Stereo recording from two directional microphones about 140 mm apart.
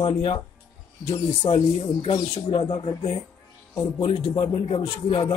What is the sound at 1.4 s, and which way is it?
Speech, 35° left (ahead or behind).